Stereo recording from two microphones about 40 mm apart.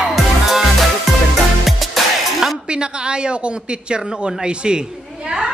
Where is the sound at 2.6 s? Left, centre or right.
Right.